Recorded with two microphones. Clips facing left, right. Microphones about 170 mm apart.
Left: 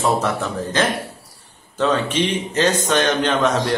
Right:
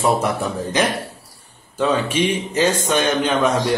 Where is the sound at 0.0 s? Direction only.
10° right (ahead or behind).